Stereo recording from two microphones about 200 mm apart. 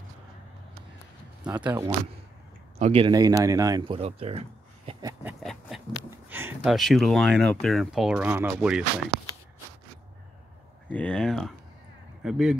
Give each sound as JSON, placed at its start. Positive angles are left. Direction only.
{"t": 1.4, "sound": "speech", "side_deg": -5}
{"t": 2.8, "sound": "speech", "side_deg": -30}
{"t": 5.4, "sound": "speech", "side_deg": 0}
{"t": 6.0, "sound": "speech", "side_deg": -10}
{"t": 9.1, "sound": "a sound", "side_deg": -55}
{"t": 10.9, "sound": "speech", "side_deg": 5}